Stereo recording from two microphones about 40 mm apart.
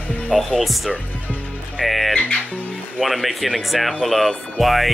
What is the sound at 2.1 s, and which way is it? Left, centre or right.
Speech, left.